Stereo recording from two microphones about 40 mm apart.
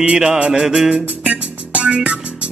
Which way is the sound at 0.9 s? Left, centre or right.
Right.